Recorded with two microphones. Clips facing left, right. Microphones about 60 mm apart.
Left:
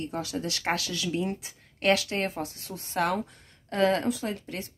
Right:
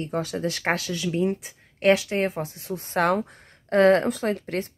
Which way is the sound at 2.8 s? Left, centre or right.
Right.